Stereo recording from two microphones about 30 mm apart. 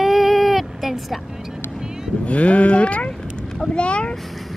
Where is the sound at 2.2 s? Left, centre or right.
Left.